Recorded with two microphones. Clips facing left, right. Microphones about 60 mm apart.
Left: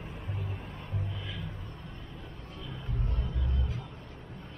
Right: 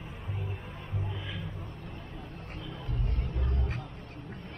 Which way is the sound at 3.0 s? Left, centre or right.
Right.